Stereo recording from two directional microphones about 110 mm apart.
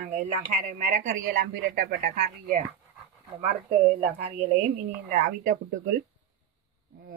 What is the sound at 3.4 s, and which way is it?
Speech, 70° right (ahead or behind).